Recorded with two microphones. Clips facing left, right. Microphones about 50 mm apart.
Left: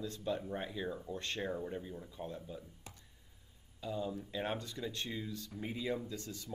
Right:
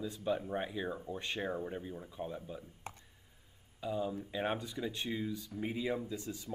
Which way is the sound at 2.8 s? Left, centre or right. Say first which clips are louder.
Right 8 dB; right.